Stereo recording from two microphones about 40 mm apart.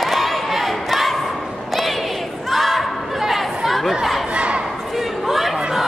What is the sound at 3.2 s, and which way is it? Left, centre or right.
Chatter, centre.